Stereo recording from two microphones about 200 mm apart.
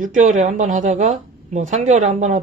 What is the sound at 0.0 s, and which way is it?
Speech, 40° right (ahead or behind).